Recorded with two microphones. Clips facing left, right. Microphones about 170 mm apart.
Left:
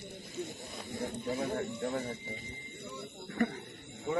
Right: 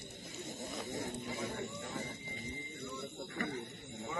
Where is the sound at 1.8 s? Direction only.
50° left (ahead or behind).